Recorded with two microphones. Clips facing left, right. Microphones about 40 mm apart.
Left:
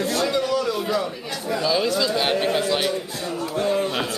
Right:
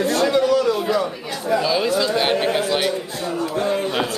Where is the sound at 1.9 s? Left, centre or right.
Centre.